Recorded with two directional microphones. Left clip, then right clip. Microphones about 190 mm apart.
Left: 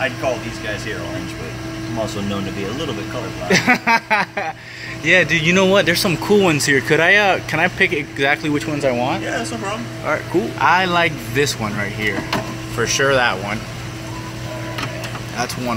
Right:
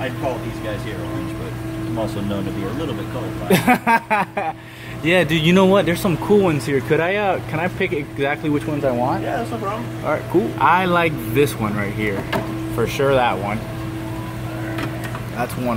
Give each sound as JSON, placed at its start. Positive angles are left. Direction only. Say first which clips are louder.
{"t": 3.4, "sound": "speech", "louder": "left 1 dB", "side_deg": -10}
{"t": 5.0, "sound": "speech", "louder": "left 3 dB", "side_deg": -15}
{"t": 5.7, "sound": "speech", "louder": "left 2 dB", "side_deg": -5}
{"t": 15.3, "sound": "speech", "louder": "even", "side_deg": -5}